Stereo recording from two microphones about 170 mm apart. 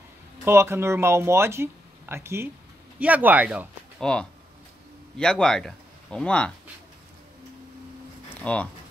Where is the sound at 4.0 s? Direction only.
5° left (ahead or behind).